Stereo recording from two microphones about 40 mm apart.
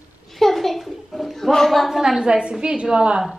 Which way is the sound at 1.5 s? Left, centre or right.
Centre.